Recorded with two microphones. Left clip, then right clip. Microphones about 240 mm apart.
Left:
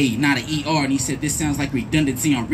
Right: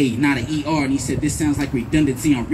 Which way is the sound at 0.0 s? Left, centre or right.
Left.